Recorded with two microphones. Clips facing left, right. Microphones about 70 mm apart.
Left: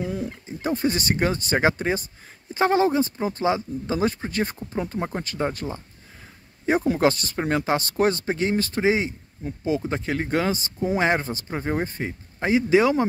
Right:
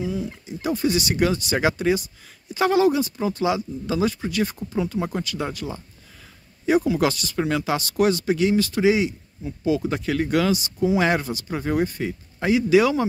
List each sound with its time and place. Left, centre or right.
0.0 s speech: left
0.5 s speech: left